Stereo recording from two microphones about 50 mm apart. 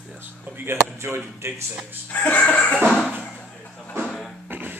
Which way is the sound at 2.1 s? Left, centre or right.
Left.